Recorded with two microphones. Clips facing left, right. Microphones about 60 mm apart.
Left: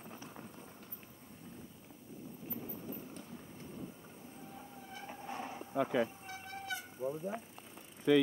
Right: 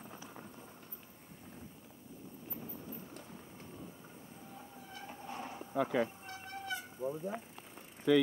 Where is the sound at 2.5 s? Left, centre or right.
Centre.